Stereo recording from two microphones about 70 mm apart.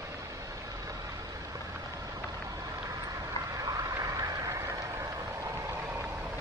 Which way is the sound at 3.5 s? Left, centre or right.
Right.